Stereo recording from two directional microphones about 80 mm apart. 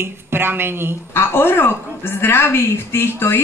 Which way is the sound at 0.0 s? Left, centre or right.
Right.